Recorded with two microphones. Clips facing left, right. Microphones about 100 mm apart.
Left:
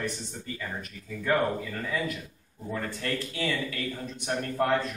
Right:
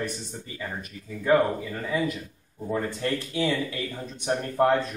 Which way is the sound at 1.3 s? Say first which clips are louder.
Right 6 dB; 20° right (ahead or behind).